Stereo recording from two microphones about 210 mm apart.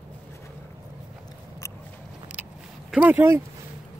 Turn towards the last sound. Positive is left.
turn(degrees=-10)  # may be behind; listen again after turning